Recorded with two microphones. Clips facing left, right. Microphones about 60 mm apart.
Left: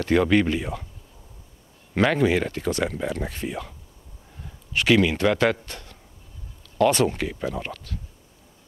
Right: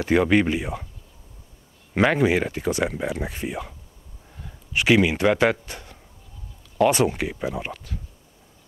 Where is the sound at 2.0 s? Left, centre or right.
Centre.